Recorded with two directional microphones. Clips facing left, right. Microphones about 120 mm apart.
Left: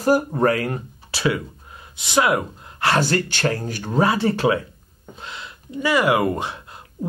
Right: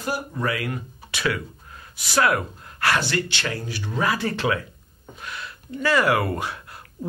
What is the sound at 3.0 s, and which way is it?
Speech, 45° left (ahead or behind).